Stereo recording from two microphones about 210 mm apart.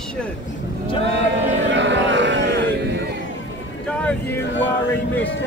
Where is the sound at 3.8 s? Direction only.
5° left (ahead or behind).